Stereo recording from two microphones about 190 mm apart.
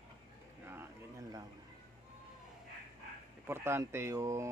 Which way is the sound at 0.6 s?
10° right (ahead or behind).